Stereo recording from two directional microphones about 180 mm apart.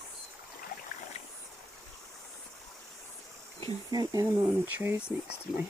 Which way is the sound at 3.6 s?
20° right (ahead or behind).